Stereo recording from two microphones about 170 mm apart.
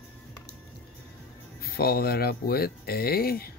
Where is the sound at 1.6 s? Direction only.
65° left (ahead or behind).